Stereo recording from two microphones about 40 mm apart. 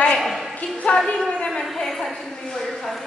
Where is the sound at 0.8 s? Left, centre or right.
Centre.